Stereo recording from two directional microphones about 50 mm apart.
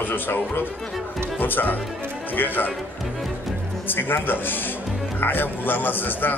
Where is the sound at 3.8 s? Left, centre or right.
Left.